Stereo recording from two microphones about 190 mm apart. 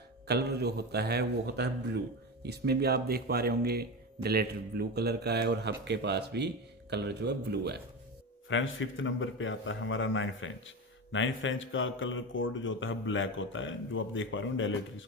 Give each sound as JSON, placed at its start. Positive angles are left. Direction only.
{"t": 0.3, "sound": "speech", "side_deg": -60}
{"t": 8.5, "sound": "speech", "side_deg": 90}